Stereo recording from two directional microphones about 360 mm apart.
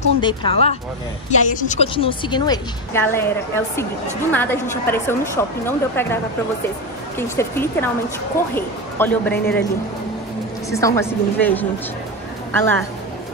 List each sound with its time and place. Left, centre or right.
0.2 s a woman's voice: centre
7.2 s a woman's voice: centre
10.7 s a woman's voice: centre